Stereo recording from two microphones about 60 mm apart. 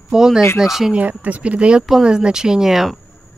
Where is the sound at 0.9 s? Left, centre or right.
Right; by 3.0 s centre.